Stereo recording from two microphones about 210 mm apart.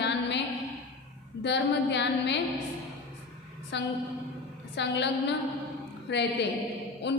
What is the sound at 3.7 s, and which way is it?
A woman's voice, 55° left (ahead or behind).